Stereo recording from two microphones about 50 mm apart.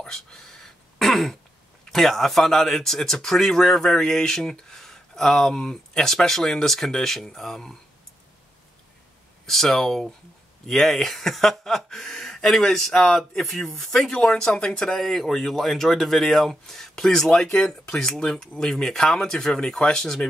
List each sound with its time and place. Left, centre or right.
0.0 s a sound: centre
1.9 s speech: centre
9.5 s speech: centre
14.2 s speech: centre